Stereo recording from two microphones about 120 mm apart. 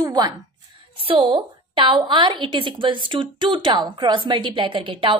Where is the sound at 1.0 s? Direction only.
45° right (ahead or behind).